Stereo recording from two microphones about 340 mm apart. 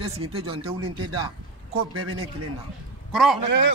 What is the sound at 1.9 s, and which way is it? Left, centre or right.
Speech, right.